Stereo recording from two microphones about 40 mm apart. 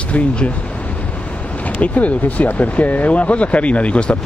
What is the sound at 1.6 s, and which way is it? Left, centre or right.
Speech, left.